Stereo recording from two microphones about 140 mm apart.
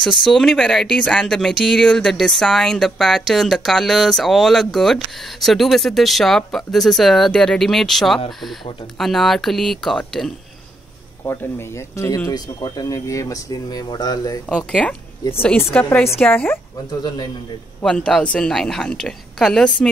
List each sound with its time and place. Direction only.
0.0 s speech: 5° left (ahead or behind)
11.2 s speech: 20° left (ahead or behind)
14.7 s a woman's voice: 5° left (ahead or behind)
17.8 s speech: 5° left (ahead or behind)